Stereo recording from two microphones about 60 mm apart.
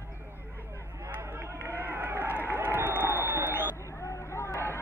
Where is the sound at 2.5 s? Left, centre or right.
Right.